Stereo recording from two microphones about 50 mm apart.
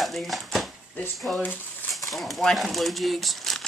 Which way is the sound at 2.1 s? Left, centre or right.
Centre.